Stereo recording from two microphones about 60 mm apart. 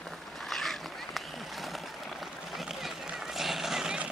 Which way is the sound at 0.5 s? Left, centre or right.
Centre.